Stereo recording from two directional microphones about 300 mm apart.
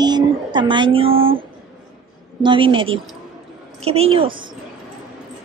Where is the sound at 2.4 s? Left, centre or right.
Centre.